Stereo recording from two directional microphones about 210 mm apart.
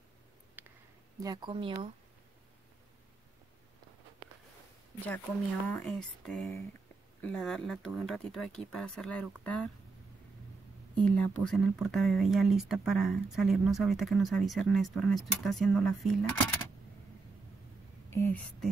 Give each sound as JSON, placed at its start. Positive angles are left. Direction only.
{"t": 0.6, "sound": "a sound", "side_deg": -5}
{"t": 1.2, "sound": "speech", "side_deg": -20}
{"t": 5.7, "sound": "speech", "side_deg": 5}
{"t": 11.0, "sound": "speech", "side_deg": 5}
{"t": 18.1, "sound": "speech", "side_deg": 10}